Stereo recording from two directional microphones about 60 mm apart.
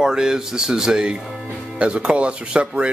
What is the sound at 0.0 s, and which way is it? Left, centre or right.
Speech, centre.